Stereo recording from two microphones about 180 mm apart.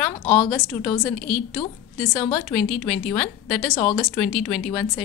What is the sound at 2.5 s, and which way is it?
A woman's voice, centre (ahead or behind).